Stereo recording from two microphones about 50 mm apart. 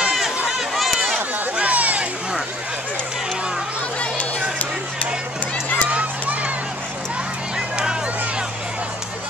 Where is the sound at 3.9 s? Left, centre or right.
Left.